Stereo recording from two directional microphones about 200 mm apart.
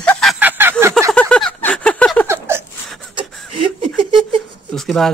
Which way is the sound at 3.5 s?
25° right (ahead or behind).